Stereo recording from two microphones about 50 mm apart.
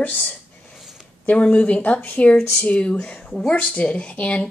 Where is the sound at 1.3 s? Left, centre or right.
Left.